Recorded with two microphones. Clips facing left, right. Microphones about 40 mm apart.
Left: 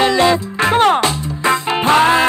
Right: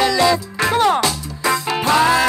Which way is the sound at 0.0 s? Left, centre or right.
Left.